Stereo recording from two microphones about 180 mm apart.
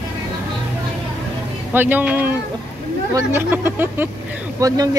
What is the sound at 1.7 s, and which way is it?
Speech, 10° right (ahead or behind).